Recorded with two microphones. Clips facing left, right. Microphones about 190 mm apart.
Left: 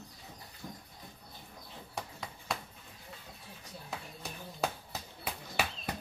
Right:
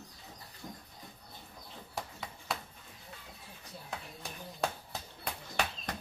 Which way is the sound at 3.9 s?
5° left (ahead or behind).